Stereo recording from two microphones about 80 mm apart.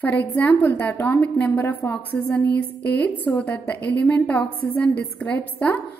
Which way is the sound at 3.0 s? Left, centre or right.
Centre.